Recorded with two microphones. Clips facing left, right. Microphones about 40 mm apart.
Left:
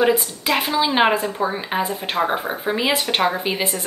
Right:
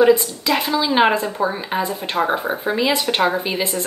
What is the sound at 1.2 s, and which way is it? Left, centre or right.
A woman's voice, centre.